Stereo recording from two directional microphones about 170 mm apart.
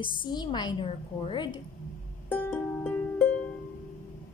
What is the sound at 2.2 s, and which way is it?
Music, 10° left (ahead or behind).